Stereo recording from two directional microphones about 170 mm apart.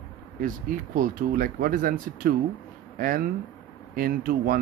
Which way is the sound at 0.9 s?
55° right (ahead or behind).